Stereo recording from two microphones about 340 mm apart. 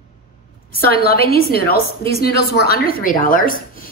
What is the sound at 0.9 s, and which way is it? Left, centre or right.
Speech, left.